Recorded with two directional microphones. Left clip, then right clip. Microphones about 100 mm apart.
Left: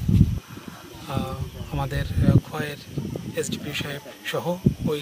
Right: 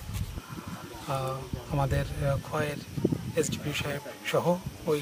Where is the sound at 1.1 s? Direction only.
Centre (ahead or behind).